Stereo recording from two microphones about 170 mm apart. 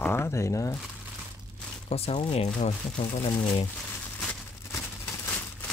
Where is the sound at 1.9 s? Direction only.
35° left (ahead or behind).